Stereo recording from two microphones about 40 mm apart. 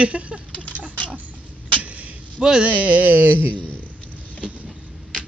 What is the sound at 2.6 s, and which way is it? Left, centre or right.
A woman's voice, right.